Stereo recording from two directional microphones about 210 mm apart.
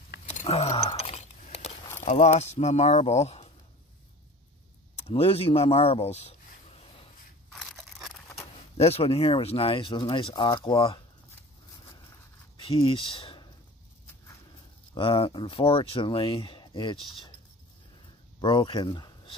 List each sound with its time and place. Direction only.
0.4 s a sound: 30° left (ahead or behind)
2.0 s speech: 35° left (ahead or behind)
4.9 s a sound: 30° left (ahead or behind)
7.5 s crunch: centre (ahead or behind)
8.7 s speech: 30° left (ahead or behind)
12.6 s speech: 25° left (ahead or behind)
15.0 s speech: 25° left (ahead or behind)
18.4 s speech: 25° left (ahead or behind)